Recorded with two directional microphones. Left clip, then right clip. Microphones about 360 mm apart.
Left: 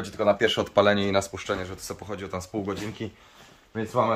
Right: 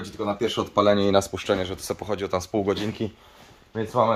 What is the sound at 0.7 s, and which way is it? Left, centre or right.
Speech, centre.